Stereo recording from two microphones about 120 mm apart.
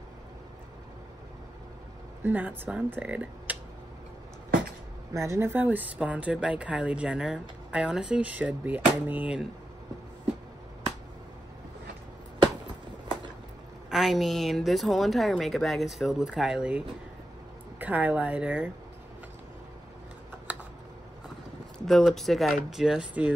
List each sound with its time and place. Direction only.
2.2 s speech: 15° right (ahead or behind)
5.1 s speech: 25° right (ahead or behind)
13.8 s a woman's voice: centre (ahead or behind)
21.7 s a woman's voice: 5° left (ahead or behind)